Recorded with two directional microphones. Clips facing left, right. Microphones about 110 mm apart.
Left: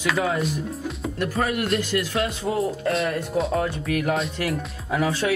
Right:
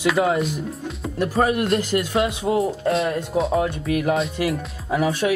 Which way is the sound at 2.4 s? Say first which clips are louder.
Right 4 dB; 25° right (ahead or behind).